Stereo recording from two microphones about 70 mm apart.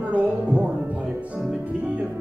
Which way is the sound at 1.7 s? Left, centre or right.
Right.